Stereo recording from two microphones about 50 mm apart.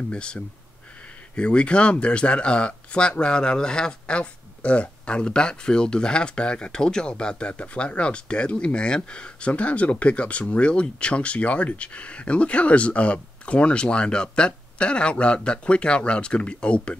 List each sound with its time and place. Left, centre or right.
0.1 s speech: centre